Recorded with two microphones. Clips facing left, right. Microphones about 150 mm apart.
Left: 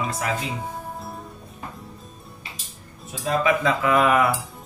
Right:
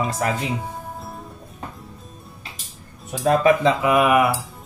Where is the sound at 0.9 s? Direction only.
Centre (ahead or behind).